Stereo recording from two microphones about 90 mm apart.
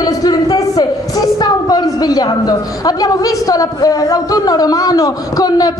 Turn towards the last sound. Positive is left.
turn(degrees=45)  # may be behind; listen again after turning